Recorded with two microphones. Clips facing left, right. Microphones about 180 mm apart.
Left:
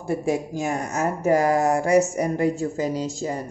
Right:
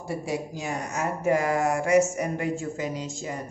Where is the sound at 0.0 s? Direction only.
50° left (ahead or behind).